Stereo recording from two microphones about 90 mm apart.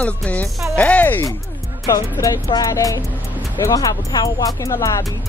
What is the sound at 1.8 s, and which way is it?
Speech, 40° left (ahead or behind).